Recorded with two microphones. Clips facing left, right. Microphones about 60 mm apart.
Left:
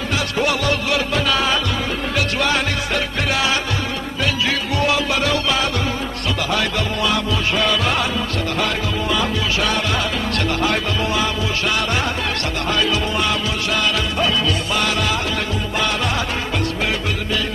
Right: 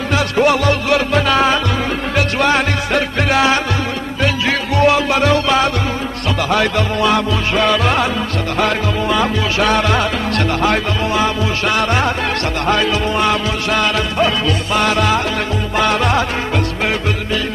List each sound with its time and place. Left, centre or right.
0.1 s music: right
10.6 s music: right